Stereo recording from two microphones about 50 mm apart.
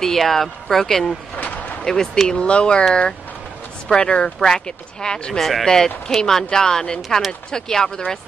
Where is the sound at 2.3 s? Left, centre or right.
Left.